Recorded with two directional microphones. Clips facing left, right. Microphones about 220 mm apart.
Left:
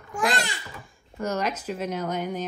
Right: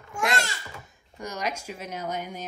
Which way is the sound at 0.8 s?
15° right (ahead or behind).